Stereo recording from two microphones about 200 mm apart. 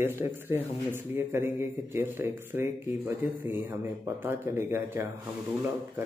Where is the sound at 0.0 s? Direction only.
10° right (ahead or behind).